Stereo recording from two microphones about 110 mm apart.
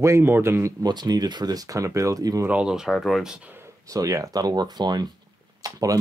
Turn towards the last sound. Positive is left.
turn(degrees=-30)  # may be behind; listen again after turning